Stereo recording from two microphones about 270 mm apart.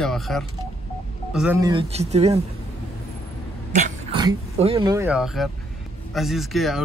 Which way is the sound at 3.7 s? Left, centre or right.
Centre.